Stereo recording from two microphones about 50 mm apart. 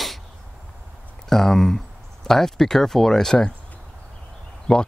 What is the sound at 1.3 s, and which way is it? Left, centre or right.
Speech, centre.